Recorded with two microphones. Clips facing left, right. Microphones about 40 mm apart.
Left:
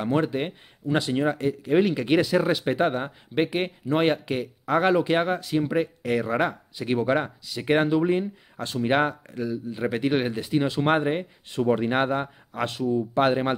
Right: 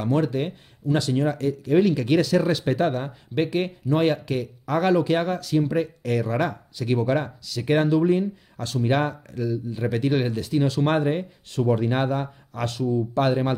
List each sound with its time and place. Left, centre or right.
0.0 s speech: left